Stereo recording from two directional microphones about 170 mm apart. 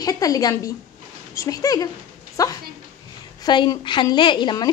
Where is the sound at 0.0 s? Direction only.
20° left (ahead or behind).